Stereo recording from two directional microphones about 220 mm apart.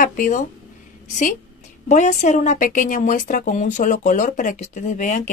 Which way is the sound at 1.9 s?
30° left (ahead or behind).